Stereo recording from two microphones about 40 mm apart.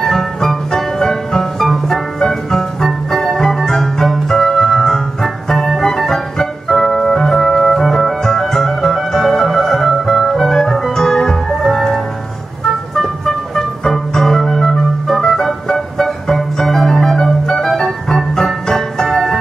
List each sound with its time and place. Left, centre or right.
0.0 s music: centre